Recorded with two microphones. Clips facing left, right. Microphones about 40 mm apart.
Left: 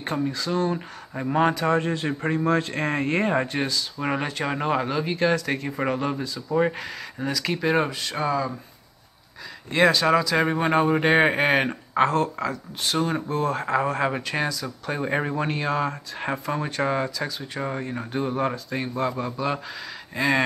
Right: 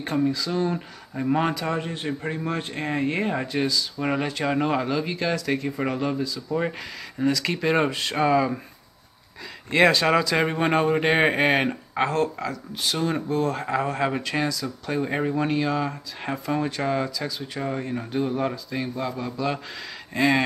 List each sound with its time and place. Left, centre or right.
0.1 s a man's voice: centre
2.3 s a man's voice: centre
3.3 s a man's voice: centre
9.7 s a man's voice: centre
12.2 s speech: centre
13.9 s speech: centre
18.5 s speech: left
19.2 s speech: centre
20.2 s a man's voice: centre